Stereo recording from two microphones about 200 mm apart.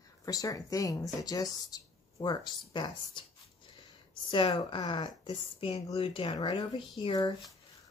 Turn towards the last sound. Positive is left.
turn(degrees=20)  # may be behind; listen again after turning